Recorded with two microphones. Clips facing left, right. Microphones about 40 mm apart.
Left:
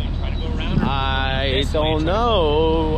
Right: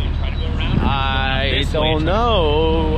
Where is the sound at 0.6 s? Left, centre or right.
Right.